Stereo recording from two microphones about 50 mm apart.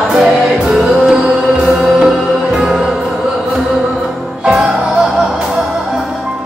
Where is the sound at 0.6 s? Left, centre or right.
Centre.